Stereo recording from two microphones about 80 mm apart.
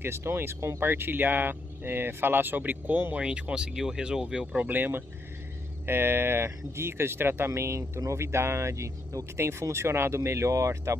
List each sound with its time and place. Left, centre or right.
0.0 s speech: right; by 4.6 s centre
4.6 s speech: right